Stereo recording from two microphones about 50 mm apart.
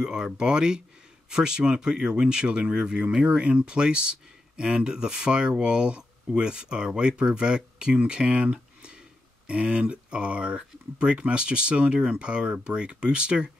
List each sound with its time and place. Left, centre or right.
0.0 s speech: centre